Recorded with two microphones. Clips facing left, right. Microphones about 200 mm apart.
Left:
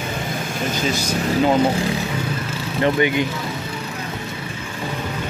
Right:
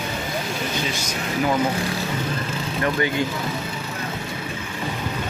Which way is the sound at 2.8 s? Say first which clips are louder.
Left 5 dB; 20° left (ahead or behind).